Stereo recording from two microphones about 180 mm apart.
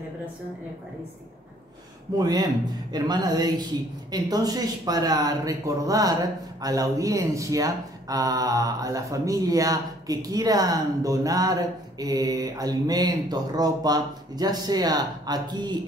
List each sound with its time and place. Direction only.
2.1 s speech: 20° right (ahead or behind)